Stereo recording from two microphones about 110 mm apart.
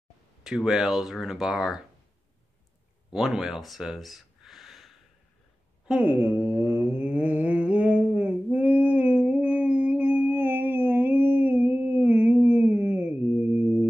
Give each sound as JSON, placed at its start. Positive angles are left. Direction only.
{"t": 0.4, "sound": "speech", "side_deg": -5}
{"t": 3.1, "sound": "a sound", "side_deg": -5}
{"t": 5.9, "sound": "mantra", "side_deg": -15}